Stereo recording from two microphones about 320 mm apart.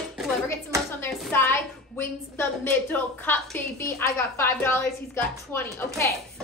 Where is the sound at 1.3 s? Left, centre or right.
Centre.